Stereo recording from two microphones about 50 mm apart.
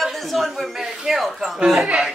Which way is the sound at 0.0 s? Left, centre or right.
Centre.